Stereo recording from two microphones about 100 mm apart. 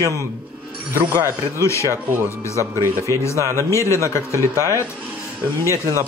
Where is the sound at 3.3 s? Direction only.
30° right (ahead or behind).